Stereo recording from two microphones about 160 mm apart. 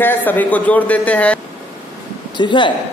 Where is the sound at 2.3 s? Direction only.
30° left (ahead or behind).